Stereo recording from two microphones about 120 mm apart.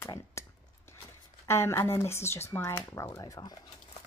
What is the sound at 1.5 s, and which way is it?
A woman's voice, 20° left (ahead or behind).